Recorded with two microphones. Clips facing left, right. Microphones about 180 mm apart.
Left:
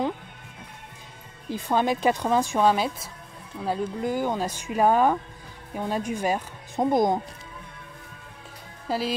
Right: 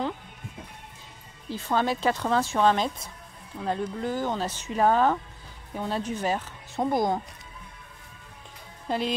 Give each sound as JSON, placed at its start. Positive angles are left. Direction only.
{"t": 1.5, "sound": "a woman's voice", "side_deg": 15}
{"t": 8.8, "sound": "speech", "side_deg": 5}